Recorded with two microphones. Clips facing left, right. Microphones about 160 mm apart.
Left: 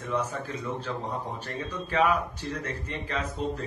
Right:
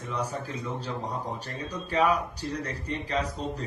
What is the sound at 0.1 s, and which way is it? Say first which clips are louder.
Speech: left 2 dB; 35° right (ahead or behind).